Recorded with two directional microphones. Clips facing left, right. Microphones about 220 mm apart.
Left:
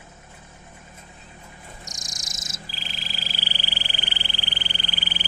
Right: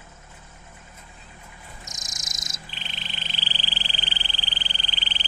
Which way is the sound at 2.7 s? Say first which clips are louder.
Left 2 dB; centre (ahead or behind).